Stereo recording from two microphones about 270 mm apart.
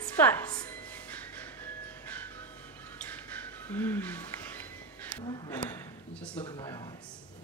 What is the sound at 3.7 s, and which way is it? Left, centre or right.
Music, centre.